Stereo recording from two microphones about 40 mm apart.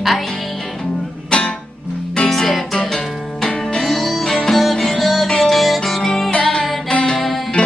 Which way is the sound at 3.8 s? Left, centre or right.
Centre.